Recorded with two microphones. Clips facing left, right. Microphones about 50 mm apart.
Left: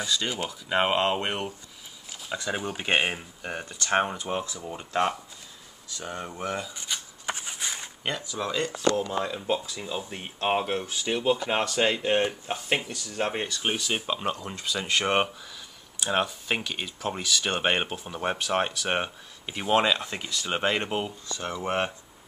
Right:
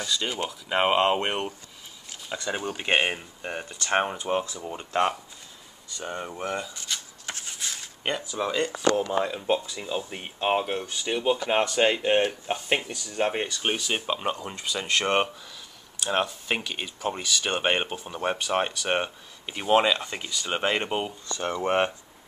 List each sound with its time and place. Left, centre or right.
0.0 s speech: centre
6.7 s a sound: centre
8.0 s speech: centre